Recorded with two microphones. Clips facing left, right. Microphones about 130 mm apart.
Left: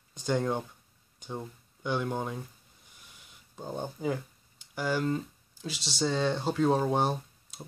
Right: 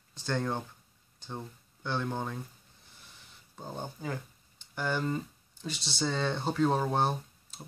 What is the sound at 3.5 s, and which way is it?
Speech, 10° left (ahead or behind).